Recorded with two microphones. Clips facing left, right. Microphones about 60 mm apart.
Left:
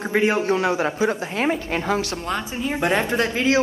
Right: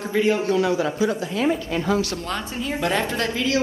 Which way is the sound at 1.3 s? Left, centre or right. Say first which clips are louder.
Even; left.